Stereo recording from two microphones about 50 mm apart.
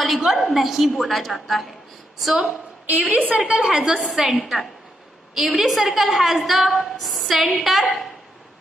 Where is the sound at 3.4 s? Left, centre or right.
Centre.